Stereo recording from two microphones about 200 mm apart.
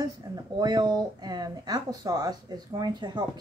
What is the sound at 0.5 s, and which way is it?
Speech, 20° right (ahead or behind).